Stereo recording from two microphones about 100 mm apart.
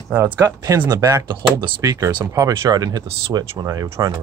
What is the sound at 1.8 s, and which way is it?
Speech, 35° right (ahead or behind).